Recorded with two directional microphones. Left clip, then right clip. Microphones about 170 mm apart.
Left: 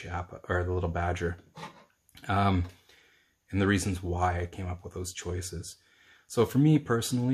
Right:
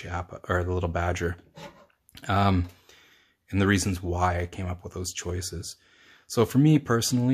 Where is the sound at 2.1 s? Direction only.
25° right (ahead or behind).